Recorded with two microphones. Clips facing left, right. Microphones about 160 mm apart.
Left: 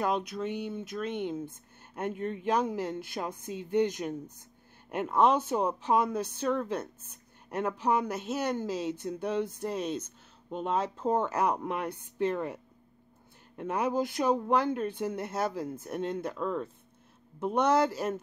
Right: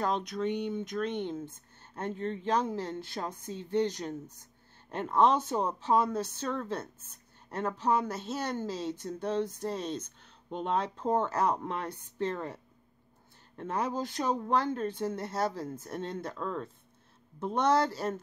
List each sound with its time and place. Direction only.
0.0 s speech: 10° left (ahead or behind)
13.6 s speech: 10° left (ahead or behind)